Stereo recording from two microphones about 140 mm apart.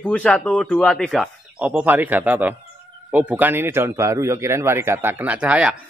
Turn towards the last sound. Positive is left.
turn(degrees=-10)  # may be behind; listen again after turning